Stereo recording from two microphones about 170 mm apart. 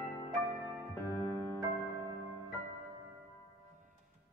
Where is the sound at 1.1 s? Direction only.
20° left (ahead or behind).